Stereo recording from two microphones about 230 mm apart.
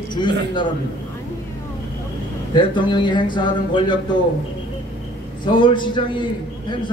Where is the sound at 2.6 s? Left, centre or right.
Centre.